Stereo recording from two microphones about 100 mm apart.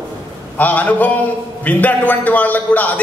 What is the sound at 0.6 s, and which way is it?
A man's voice, 15° left (ahead or behind).